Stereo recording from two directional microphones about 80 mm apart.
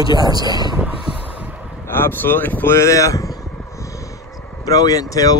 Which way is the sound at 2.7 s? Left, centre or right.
Left.